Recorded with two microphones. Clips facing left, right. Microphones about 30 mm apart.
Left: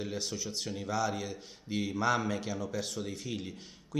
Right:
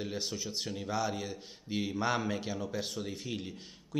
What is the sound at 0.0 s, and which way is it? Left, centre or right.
A man's voice, centre.